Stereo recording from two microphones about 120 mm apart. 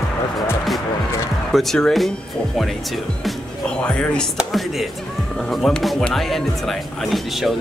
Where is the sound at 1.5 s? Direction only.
Centre (ahead or behind).